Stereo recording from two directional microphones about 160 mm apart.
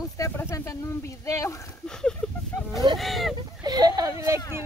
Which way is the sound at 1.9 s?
5° left (ahead or behind).